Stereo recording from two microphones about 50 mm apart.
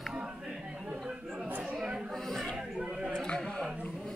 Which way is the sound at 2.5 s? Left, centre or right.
Centre.